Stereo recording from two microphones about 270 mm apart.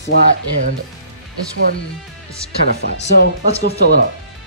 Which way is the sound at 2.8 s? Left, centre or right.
Left.